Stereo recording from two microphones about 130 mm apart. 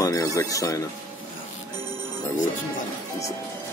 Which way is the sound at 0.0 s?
25° left (ahead or behind).